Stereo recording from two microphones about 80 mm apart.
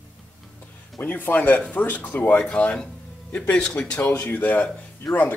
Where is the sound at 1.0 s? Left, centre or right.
Left.